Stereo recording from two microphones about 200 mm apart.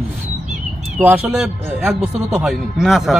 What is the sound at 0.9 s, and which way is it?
Speech, 10° right (ahead or behind).